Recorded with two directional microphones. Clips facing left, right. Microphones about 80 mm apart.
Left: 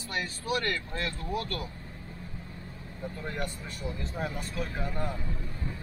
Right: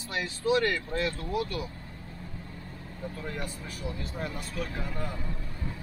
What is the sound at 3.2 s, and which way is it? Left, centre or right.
Speech, centre.